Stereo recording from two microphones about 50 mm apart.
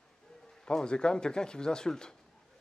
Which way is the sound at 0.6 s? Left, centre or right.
Centre.